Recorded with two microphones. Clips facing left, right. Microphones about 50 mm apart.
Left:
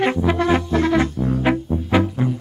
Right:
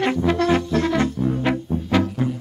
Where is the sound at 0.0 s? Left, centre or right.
Centre.